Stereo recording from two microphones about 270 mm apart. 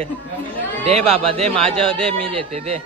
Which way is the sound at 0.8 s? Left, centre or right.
Right.